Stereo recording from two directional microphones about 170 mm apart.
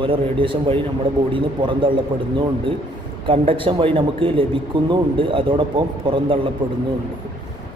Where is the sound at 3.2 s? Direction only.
30° right (ahead or behind).